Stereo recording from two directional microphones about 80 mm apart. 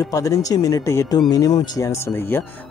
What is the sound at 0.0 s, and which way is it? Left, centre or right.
Speech, left.